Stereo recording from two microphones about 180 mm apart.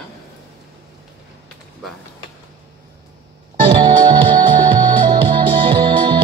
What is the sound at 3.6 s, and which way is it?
Music, 25° right (ahead or behind).